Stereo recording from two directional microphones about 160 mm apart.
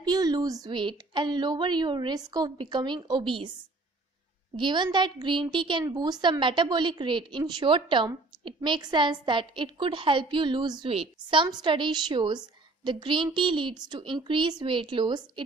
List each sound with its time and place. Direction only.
0.0 s a woman's voice: 25° right (ahead or behind)
4.6 s a woman's voice: 30° right (ahead or behind)